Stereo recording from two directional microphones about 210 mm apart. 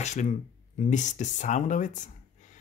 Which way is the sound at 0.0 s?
35° left (ahead or behind).